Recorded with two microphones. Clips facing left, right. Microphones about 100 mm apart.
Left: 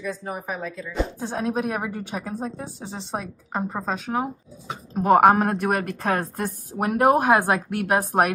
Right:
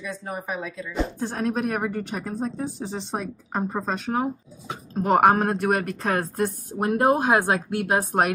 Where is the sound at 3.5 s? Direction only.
Centre (ahead or behind).